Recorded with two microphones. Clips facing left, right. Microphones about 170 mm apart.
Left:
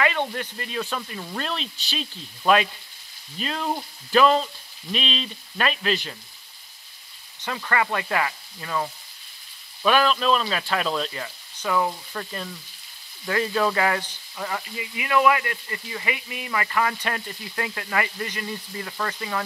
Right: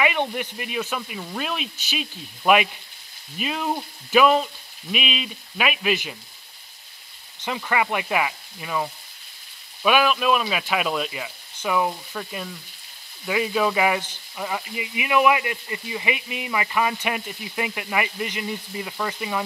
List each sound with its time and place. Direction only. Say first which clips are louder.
0.0 s speech: right 1 dB; 15° right (ahead or behind)
7.4 s speech: right 1 dB; 15° right (ahead or behind)